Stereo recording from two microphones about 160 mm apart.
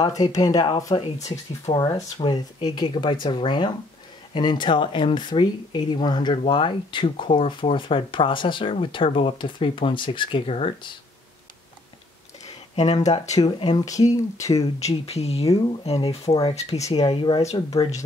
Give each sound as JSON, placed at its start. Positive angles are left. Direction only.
{"t": 0.0, "sound": "speech", "side_deg": 25}
{"t": 12.4, "sound": "a sound", "side_deg": 40}
{"t": 13.0, "sound": "speech", "side_deg": 45}
{"t": 13.4, "sound": "speech", "side_deg": 25}
{"t": 14.8, "sound": "speech", "side_deg": 40}
{"t": 16.3, "sound": "speech", "side_deg": 20}
{"t": 16.9, "sound": "speech", "side_deg": 30}